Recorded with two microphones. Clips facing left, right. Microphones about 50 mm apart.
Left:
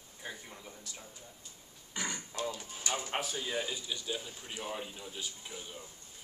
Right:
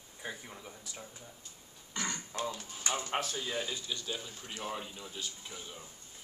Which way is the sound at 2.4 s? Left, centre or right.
Centre.